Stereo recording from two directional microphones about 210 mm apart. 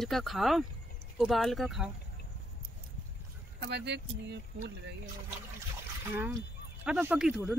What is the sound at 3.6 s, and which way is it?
Speech, 55° right (ahead or behind).